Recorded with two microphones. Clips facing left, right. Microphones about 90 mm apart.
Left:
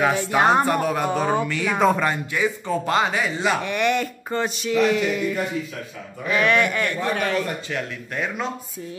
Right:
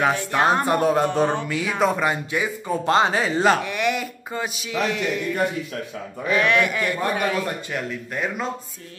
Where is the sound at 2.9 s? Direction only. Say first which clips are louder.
Right 4 dB; 30° right (ahead or behind).